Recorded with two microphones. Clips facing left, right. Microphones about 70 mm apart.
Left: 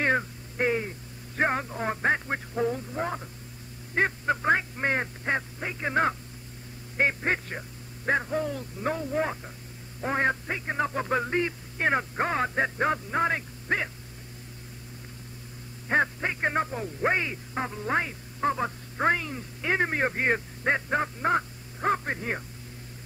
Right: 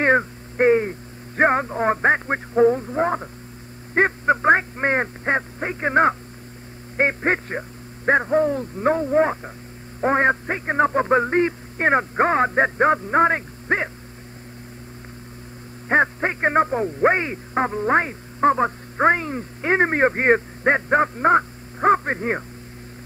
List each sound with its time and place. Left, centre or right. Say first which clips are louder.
0.0 s a sound: right 8 dB; right
3.9 s speech: right 7 dB; right
15.9 s speech: right 6 dB; right